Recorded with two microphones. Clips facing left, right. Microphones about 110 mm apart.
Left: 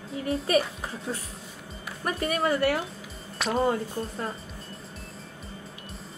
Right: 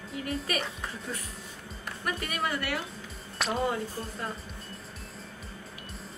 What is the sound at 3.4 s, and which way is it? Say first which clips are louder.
Speech: left 2 dB; centre (ahead or behind).